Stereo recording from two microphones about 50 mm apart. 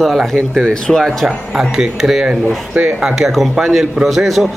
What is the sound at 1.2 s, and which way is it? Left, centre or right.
A man's voice, centre.